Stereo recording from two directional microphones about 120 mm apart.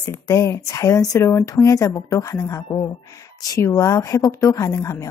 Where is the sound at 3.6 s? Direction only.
25° left (ahead or behind).